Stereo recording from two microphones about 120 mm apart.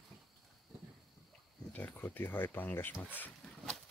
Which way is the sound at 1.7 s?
15° left (ahead or behind).